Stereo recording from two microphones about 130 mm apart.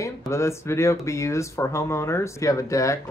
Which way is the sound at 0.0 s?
20° left (ahead or behind).